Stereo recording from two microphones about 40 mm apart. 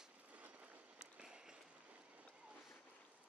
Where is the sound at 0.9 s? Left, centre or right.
Centre.